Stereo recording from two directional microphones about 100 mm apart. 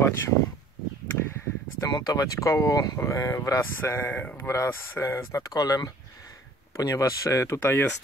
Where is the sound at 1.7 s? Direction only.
40° left (ahead or behind); by 4.3 s 15° left (ahead or behind).